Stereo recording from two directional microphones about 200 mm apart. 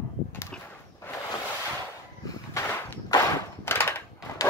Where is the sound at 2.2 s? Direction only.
15° left (ahead or behind).